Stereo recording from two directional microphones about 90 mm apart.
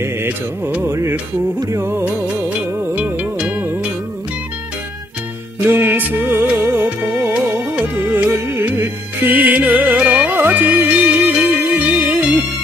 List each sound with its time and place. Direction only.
0.8 s music: 25° right (ahead or behind)
5.7 s music: 25° right (ahead or behind)